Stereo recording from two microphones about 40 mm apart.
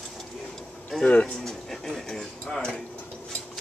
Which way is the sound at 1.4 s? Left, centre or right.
Centre.